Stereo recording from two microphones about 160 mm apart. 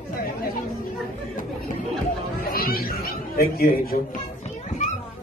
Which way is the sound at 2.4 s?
65° left (ahead or behind).